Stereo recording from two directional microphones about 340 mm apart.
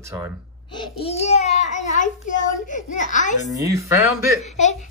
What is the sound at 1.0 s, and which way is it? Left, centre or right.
A child's voice, centre.